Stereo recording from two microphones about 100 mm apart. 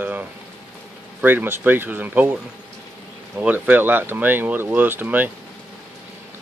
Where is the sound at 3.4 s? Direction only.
15° right (ahead or behind).